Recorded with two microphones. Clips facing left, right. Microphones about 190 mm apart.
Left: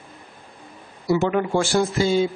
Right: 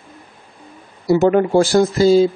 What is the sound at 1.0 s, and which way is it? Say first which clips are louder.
Speech: right 7 dB; 45° right (ahead or behind).